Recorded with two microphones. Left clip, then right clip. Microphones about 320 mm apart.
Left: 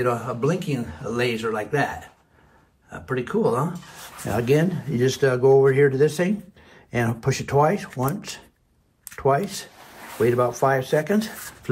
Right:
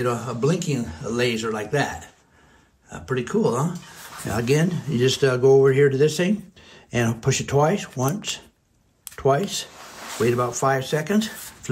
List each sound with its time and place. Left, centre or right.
0.0 s speech: centre